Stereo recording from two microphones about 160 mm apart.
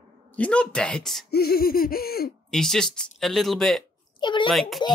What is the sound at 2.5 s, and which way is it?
Speech, 5° left (ahead or behind).